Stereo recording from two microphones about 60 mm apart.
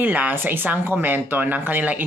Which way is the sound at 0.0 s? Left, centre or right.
Right.